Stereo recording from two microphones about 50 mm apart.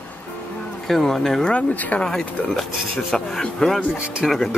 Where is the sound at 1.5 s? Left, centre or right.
Left.